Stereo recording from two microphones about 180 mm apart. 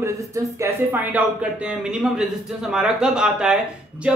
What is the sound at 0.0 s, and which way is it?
Speech, 15° right (ahead or behind).